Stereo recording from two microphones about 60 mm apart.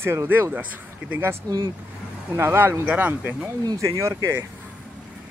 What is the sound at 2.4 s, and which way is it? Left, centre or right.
Speech, right.